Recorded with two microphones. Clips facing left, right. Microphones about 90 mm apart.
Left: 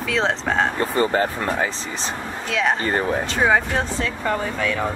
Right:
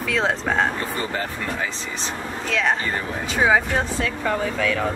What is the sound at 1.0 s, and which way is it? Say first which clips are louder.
Speech: left 11 dB; 40° left (ahead or behind).